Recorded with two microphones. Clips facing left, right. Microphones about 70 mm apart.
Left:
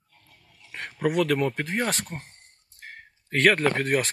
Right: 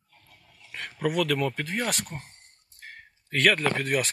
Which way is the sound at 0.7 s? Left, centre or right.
Left.